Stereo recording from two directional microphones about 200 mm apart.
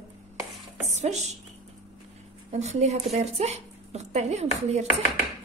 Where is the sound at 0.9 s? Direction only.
35° right (ahead or behind).